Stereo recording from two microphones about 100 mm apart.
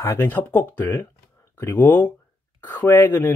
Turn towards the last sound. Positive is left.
turn(degrees=25)  # may be behind; listen again after turning